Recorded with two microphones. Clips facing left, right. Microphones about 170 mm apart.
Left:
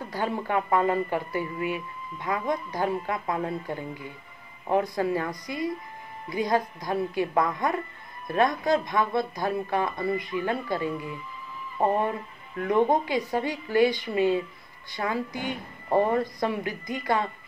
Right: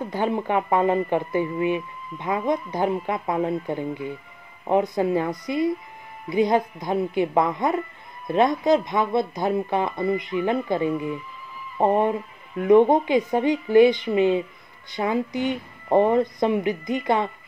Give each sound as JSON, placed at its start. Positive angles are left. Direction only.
{"t": 0.0, "sound": "speech", "side_deg": -20}
{"t": 6.3, "sound": "speech", "side_deg": -20}